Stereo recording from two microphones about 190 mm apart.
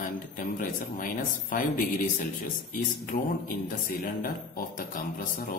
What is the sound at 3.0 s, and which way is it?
A man's voice, 50° left (ahead or behind).